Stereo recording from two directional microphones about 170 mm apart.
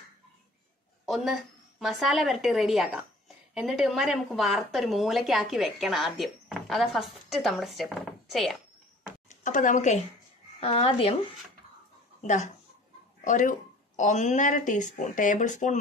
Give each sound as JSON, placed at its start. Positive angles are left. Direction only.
{"t": 1.0, "sound": "a woman's voice", "side_deg": 0}
{"t": 9.4, "sound": "speech", "side_deg": 50}
{"t": 10.6, "sound": "a woman's voice", "side_deg": 35}
{"t": 12.2, "sound": "speech", "side_deg": 45}